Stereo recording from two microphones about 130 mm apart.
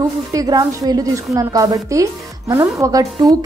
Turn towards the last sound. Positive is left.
turn(degrees=-25)  # may be behind; listen again after turning